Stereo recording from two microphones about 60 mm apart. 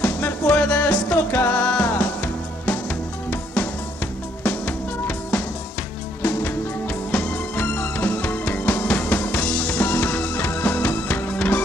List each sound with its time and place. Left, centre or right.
0.0 s music: left
1.3 s music: left
1.6 s music: left
7.1 s music: centre
9.8 s music: left